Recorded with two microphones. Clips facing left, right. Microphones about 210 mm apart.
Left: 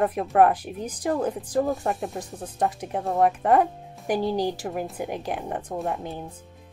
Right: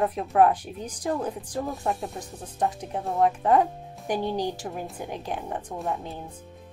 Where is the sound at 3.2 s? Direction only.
55° left (ahead or behind).